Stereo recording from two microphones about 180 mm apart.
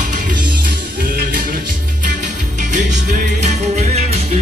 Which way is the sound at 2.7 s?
40° right (ahead or behind).